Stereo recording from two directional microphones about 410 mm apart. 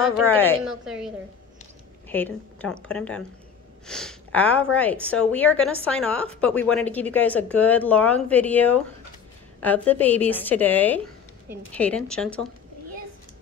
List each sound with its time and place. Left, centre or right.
0.2 s speech: centre